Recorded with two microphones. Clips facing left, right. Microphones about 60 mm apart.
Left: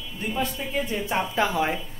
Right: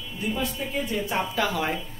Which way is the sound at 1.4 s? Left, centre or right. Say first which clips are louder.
Left 4 dB; left.